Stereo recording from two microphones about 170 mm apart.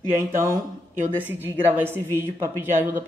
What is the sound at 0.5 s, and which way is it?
Speech, 10° right (ahead or behind).